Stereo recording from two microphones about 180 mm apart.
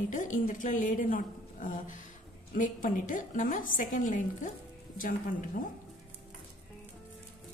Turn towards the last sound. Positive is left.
turn(degrees=50)  # may be behind; listen again after turning